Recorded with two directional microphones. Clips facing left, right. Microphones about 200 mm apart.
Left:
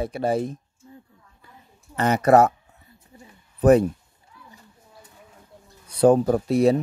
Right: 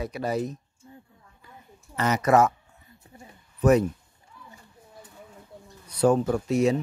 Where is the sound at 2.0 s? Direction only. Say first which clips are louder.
Left 4 dB; 30° left (ahead or behind).